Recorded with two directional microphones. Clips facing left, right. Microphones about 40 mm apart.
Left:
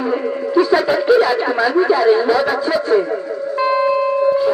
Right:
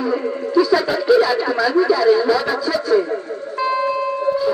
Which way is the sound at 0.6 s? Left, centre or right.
Left.